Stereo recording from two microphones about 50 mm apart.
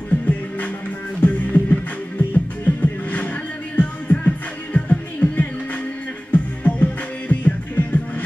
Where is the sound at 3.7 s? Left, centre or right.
Left.